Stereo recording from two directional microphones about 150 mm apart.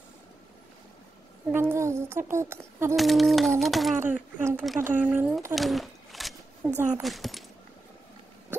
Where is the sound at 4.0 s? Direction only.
15° right (ahead or behind).